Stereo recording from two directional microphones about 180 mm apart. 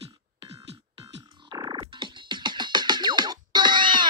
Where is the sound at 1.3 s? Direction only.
25° right (ahead or behind).